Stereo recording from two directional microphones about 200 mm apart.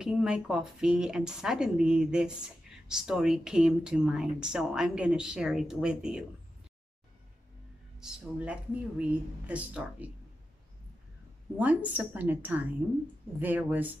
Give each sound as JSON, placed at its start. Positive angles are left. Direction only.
{"t": 0.0, "sound": "speech", "side_deg": -5}
{"t": 8.0, "sound": "speech", "side_deg": -5}
{"t": 11.5, "sound": "speech", "side_deg": -5}